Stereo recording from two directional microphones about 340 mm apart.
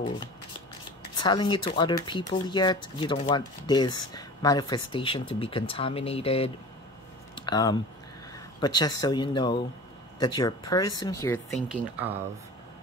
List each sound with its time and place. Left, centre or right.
1.1 s speech: centre
7.3 s a sound: centre
8.5 s speech: centre
11.5 s speech: centre